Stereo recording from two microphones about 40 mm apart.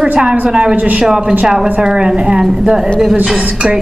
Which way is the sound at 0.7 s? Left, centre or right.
Right.